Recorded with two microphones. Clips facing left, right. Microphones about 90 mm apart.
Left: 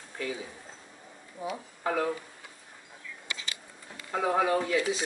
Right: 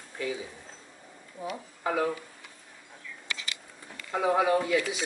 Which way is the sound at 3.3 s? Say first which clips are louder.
Right 1 dB; 25° left (ahead or behind).